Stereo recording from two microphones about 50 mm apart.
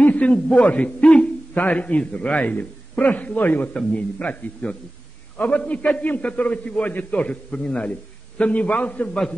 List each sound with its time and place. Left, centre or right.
0.0 s a man's voice: left
1.0 s a sound: left
1.7 s a man's voice: left